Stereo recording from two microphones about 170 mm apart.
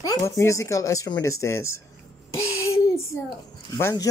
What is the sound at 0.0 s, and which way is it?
Speech, 20° left (ahead or behind).